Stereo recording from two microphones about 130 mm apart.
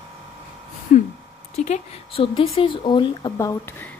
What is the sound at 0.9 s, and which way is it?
Speech, 85° left.